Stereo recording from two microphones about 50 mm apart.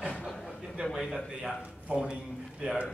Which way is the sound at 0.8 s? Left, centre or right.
Right.